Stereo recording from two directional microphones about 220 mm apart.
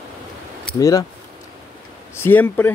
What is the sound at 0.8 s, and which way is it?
Speech, 15° left (ahead or behind).